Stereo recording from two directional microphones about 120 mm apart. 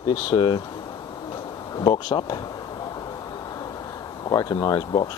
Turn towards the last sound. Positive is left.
turn(degrees=40)  # may be behind; listen again after turning